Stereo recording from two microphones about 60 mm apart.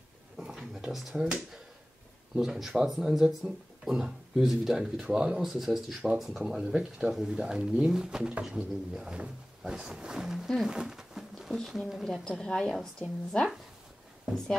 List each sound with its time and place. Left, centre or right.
0.4 s finger snapping: centre
2.3 s speech: centre
10.7 s a sound: centre
11.5 s speech: centre